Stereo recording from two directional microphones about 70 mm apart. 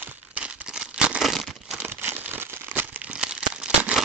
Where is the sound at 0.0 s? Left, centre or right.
Right.